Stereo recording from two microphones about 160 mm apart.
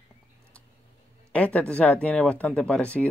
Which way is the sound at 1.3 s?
10° left (ahead or behind).